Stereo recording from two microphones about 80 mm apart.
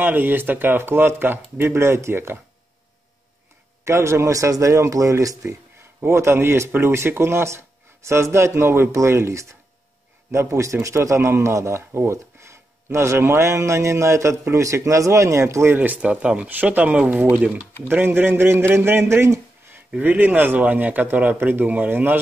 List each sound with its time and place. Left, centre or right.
0.0 s speech: right
3.8 s speech: right
20.0 s speech: right